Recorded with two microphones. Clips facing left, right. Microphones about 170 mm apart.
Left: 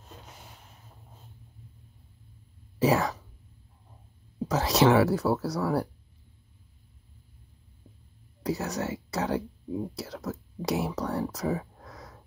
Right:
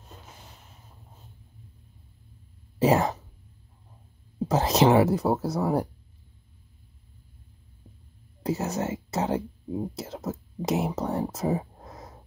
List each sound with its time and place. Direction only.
2.9 s speech: 25° right (ahead or behind)
4.5 s speech: 25° right (ahead or behind)
8.4 s speech: 25° right (ahead or behind)